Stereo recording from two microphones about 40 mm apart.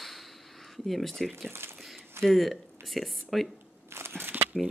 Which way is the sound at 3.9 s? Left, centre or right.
Right.